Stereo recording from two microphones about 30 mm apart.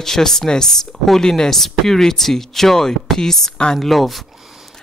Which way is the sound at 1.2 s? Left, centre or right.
Left.